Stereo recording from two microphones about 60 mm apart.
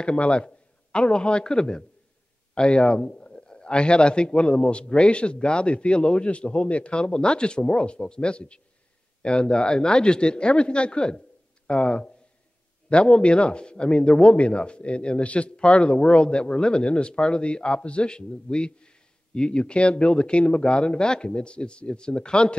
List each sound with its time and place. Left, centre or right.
0.0 s a man's voice: centre